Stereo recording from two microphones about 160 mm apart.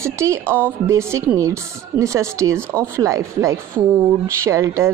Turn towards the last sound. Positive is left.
turn(degrees=-20)  # may be behind; listen again after turning